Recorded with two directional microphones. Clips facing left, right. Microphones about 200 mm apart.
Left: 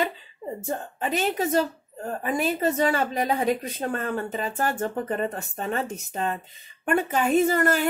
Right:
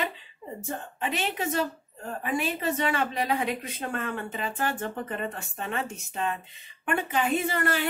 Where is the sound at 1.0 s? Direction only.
40° left (ahead or behind).